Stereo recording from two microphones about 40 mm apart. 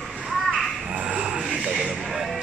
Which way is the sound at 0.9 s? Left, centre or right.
Right.